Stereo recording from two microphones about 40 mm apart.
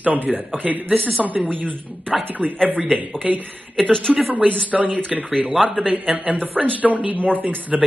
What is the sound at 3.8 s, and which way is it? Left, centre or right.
Speech, centre.